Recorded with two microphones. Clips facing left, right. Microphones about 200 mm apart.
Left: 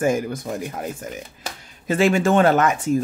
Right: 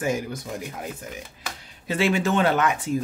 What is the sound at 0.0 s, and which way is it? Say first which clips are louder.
Speech: left 5 dB; 50° left (ahead or behind).